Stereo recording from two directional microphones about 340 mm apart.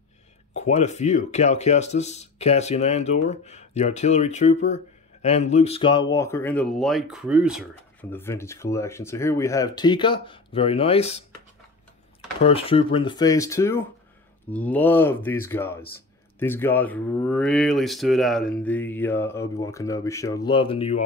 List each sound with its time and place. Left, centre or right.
0.6 s speech: centre
12.4 s speech: centre